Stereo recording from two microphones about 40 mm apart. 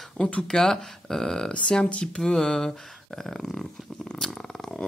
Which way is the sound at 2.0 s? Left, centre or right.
Centre.